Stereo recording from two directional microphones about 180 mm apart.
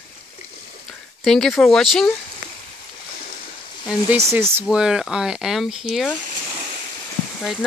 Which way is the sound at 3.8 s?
10° right (ahead or behind).